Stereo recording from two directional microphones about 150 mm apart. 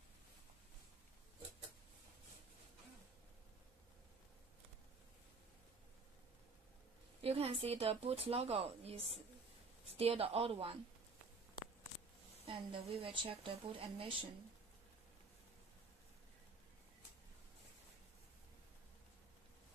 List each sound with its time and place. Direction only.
7.2 s a woman's voice: 40° right (ahead or behind)
12.4 s a woman's voice: 35° right (ahead or behind)